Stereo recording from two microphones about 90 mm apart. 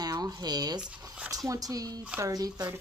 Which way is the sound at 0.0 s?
45° right (ahead or behind).